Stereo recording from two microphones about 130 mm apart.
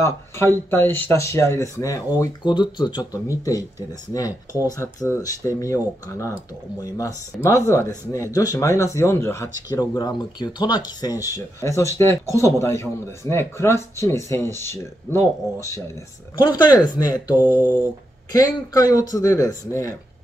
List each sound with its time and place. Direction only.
0.0 s a man's voice: 20° left (ahead or behind)
2.4 s a man's voice: 35° left (ahead or behind)
16.6 s a man's voice: 35° left (ahead or behind)